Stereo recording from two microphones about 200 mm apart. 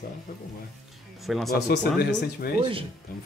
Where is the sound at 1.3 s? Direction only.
Centre (ahead or behind).